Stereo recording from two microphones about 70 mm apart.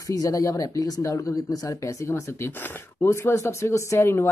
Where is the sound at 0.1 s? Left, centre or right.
Left.